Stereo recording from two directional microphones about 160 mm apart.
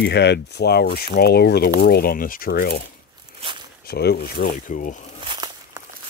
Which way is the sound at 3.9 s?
85° left.